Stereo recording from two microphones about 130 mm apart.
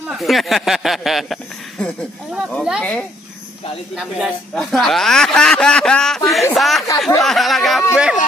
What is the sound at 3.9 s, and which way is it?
Speech, 5° right (ahead or behind).